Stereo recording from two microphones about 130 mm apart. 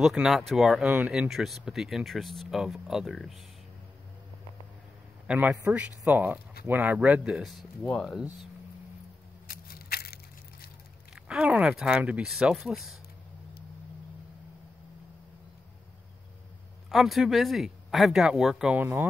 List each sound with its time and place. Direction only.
0.0 s speech: 5° right (ahead or behind)
5.2 s speech: 10° right (ahead or behind)
11.1 s speech: 10° right (ahead or behind)
16.9 s speech: centre (ahead or behind)
18.8 s speech: 15° right (ahead or behind)